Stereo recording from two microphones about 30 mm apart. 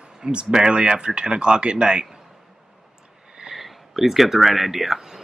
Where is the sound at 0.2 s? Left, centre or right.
Right.